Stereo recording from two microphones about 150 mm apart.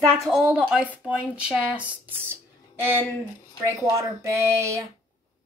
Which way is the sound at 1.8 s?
10° right (ahead or behind).